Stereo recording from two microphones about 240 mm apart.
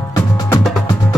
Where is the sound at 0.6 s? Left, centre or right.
Centre.